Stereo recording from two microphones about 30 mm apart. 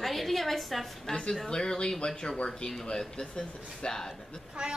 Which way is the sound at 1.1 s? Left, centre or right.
Left.